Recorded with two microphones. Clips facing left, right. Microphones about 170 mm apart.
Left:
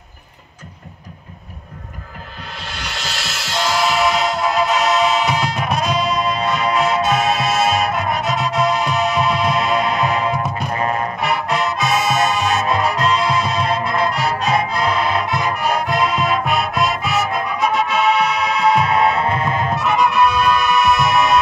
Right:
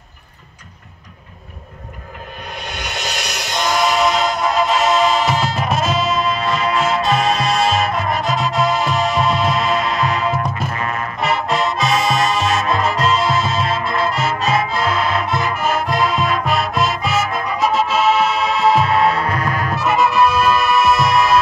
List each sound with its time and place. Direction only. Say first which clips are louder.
2.5 s music: right 3 dB; 20° right (ahead or behind)
3.8 s music: right 1 dB; centre (ahead or behind)
10.7 s music: left 3 dB; 35° left (ahead or behind)
11.1 s music: right 1 dB; centre (ahead or behind)
19.2 s music: left 1 dB; 25° left (ahead or behind)
19.7 s music: right 2 dB; centre (ahead or behind)